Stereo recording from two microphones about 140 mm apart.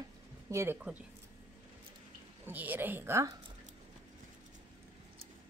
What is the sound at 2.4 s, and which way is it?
Speech, 15° right (ahead or behind).